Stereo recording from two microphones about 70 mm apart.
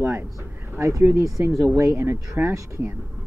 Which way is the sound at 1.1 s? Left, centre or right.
Right.